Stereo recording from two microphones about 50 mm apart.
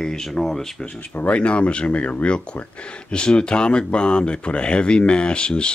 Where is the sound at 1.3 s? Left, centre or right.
Left.